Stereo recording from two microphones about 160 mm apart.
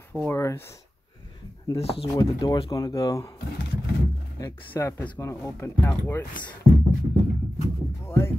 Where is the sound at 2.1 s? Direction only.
25° left (ahead or behind).